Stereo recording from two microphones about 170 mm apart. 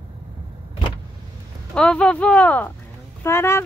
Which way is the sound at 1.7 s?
5° left (ahead or behind).